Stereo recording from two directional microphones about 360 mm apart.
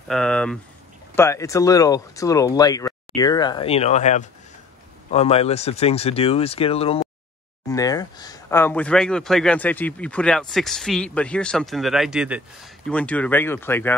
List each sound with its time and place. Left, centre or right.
0.1 s speech: centre